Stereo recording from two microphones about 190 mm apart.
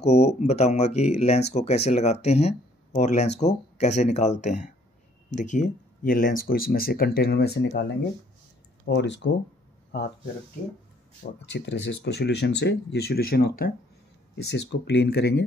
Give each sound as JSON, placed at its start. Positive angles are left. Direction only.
{"t": 0.0, "sound": "speech", "side_deg": 35}
{"t": 8.8, "sound": "speech", "side_deg": 65}
{"t": 11.4, "sound": "speech", "side_deg": 65}
{"t": 14.3, "sound": "speech", "side_deg": 60}